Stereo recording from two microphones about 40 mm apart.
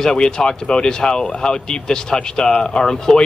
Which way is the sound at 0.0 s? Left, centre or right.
Centre.